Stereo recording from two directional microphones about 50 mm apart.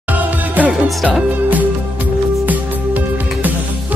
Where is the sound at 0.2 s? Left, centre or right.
Right.